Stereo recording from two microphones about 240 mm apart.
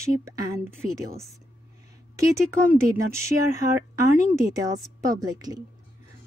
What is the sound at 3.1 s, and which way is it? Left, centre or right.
Speech, centre.